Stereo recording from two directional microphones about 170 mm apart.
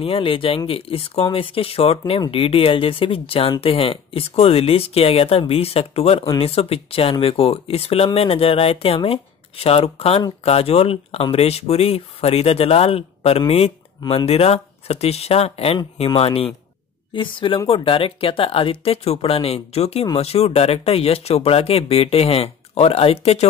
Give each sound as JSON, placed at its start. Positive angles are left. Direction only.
{"t": 0.0, "sound": "speech", "side_deg": 35}